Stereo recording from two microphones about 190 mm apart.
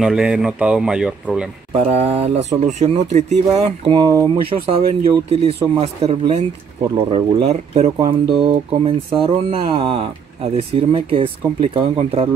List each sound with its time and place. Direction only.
0.0 s speech: 5° right (ahead or behind)
1.7 s speech: 30° right (ahead or behind)